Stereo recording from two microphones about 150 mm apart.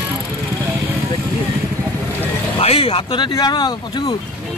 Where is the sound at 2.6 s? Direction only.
40° left (ahead or behind).